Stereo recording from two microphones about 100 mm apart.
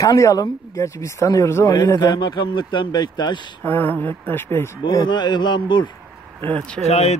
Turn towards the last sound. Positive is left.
turn(degrees=90)